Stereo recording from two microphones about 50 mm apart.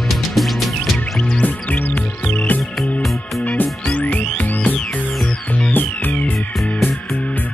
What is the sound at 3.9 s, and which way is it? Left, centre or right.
Music, left.